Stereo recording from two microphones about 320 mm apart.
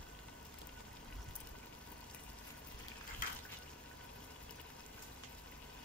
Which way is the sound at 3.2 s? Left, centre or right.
Left.